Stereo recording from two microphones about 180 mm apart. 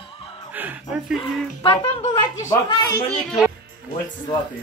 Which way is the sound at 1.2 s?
25° left (ahead or behind).